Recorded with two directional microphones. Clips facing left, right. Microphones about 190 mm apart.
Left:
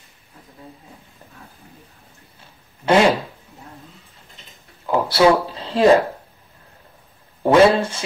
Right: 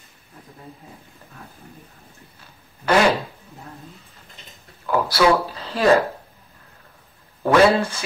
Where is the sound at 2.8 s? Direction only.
20° left (ahead or behind).